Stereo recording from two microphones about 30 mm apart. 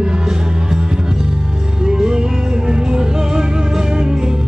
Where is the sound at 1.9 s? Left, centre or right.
Right.